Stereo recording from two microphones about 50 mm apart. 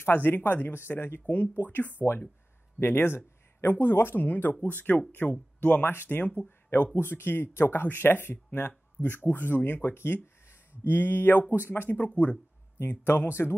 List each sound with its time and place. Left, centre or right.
0.0 s speech: left
12.0 s speech: left
12.8 s speech: left